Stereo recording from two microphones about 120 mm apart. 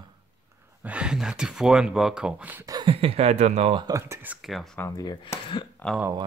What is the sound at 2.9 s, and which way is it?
Speech, 55° right (ahead or behind).